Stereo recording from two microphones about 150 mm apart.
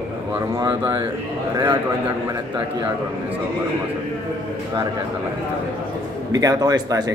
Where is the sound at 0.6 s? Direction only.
30° right (ahead or behind).